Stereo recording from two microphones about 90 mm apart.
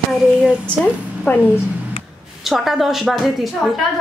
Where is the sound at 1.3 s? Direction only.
20° left (ahead or behind).